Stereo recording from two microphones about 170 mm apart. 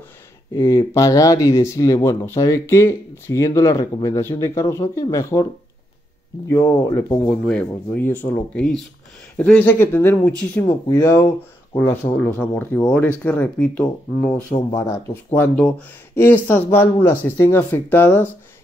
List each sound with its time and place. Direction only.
0.6 s speech: 20° left (ahead or behind)
6.7 s speech: 20° left (ahead or behind)
7.2 s speech: 5° left (ahead or behind)
14.7 s speech: 20° left (ahead or behind)
16.2 s speech: 15° left (ahead or behind)